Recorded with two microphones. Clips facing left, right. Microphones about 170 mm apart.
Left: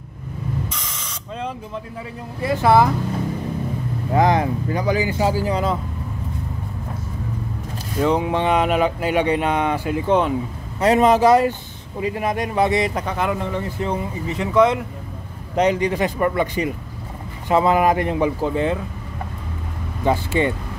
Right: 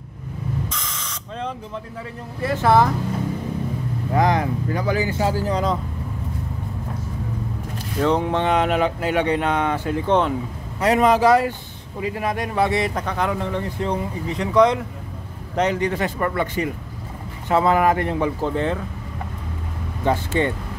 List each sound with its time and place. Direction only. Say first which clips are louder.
0.7 s spray: right 1 dB; 10° left (ahead or behind)
2.4 s speech: left 1 dB; 10° left (ahead or behind)
4.1 s speech: left 2 dB; 25° left (ahead or behind); by 5.8 s 5° left (ahead or behind)
8.0 s speech: left 1 dB; 10° left (ahead or behind)
10.8 s a man's voice: left 2 dB; 25° left (ahead or behind); by 18.8 s 5° left (ahead or behind)
20.1 s speech: left 1 dB; 10° left (ahead or behind)